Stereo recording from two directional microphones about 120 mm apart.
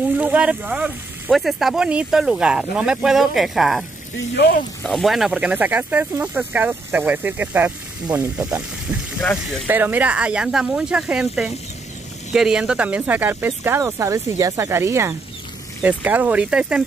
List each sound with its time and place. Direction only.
0.2 s speech: 10° right (ahead or behind)
1.3 s speech: centre (ahead or behind)
4.8 s speech: centre (ahead or behind); by 8.5 s 15° right (ahead or behind)
9.7 s speech: 15° right (ahead or behind)